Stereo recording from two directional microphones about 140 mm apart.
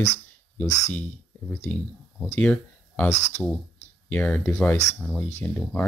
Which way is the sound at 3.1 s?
55° left (ahead or behind).